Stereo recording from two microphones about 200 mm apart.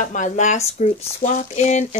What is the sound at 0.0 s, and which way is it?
Speech, 40° left (ahead or behind).